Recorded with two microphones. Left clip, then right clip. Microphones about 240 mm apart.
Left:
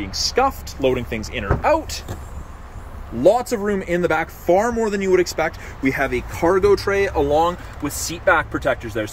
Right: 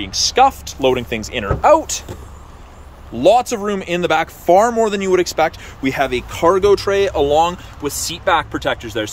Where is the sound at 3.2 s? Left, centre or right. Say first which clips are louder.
Right 3 dB; centre.